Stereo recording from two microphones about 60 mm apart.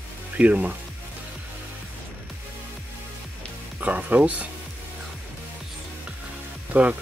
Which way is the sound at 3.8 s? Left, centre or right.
Right.